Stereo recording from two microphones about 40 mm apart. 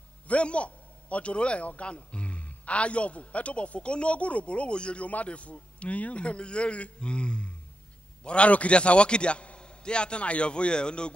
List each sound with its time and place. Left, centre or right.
0.3 s a man's voice: left